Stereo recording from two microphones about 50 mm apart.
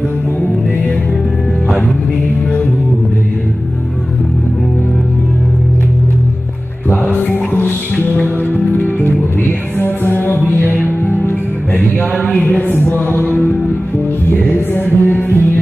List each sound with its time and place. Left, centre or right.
6.9 s music: left
9.8 s music: left
12.4 s mantra: left
14.3 s music: left